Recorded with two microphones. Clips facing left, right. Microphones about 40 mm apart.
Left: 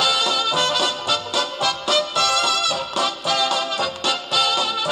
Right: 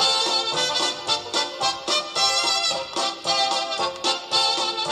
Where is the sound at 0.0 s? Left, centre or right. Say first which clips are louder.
Left 3 dB; left.